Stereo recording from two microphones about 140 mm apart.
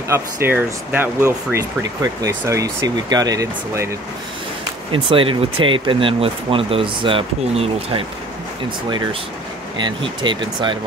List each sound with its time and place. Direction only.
0.1 s speech: 15° right (ahead or behind)
4.9 s speech: 35° right (ahead or behind)
9.8 s speech: 35° right (ahead or behind)